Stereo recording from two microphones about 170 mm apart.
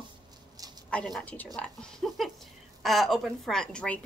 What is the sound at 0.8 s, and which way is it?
A woman's voice, 5° left (ahead or behind).